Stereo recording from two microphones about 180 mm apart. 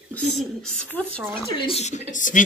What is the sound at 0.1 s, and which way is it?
Speech, 5° left (ahead or behind).